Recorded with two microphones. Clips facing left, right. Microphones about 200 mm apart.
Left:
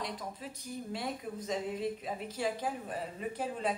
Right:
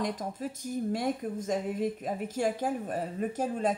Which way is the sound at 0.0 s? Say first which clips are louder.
Right 7 dB; 45° right (ahead or behind).